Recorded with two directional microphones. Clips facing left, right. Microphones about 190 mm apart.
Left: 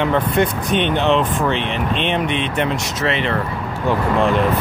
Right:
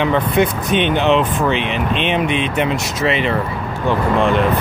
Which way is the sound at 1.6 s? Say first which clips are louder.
Right 2 dB; 30° left (ahead or behind).